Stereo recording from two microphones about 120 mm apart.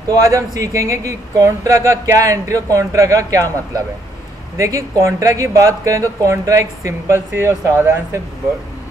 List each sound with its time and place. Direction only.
0.1 s speech: 25° right (ahead or behind)